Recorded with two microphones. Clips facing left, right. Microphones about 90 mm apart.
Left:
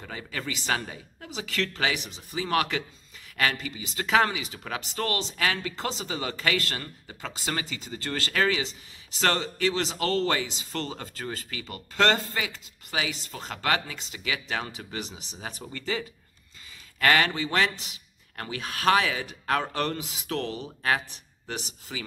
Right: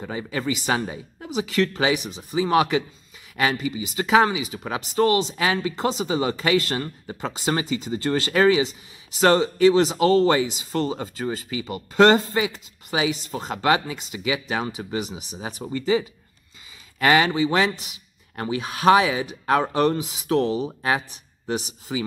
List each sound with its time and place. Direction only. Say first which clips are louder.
0.0 s speech: right 8 dB; 15° right (ahead or behind)